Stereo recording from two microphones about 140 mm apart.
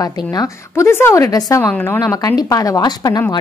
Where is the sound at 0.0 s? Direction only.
25° left (ahead or behind).